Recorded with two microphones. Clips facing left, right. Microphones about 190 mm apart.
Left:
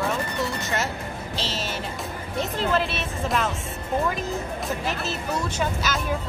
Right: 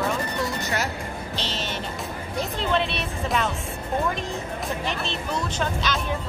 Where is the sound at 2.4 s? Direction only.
Centre (ahead or behind).